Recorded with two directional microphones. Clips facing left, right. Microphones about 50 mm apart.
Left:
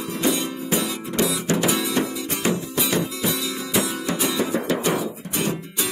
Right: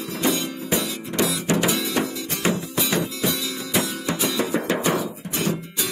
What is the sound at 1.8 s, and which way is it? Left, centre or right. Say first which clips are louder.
Music: left 1 dB; centre.